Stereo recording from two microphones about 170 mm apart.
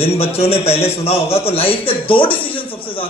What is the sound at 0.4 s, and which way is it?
Speech, 35° left (ahead or behind).